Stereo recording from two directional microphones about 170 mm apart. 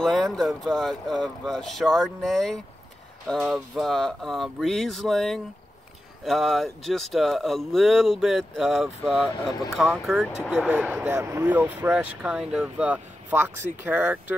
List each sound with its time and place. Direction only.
0.0 s speech: centre (ahead or behind)
9.5 s speech: 20° left (ahead or behind)
9.8 s speech: centre (ahead or behind)